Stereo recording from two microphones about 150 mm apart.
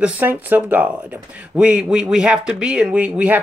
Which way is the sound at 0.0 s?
10° right (ahead or behind).